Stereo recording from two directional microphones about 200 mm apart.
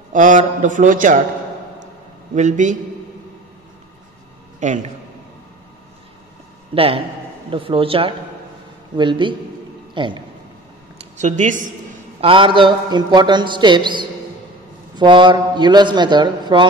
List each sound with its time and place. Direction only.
0.1 s a man's voice: 40° right (ahead or behind)
2.3 s a man's voice: 35° right (ahead or behind)
4.6 s a man's voice: 35° right (ahead or behind)
6.7 s a man's voice: 25° right (ahead or behind)
11.0 s speech: 35° right (ahead or behind)
12.2 s a man's voice: 25° right (ahead or behind)